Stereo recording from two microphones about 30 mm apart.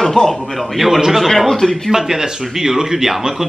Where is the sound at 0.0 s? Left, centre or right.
Centre.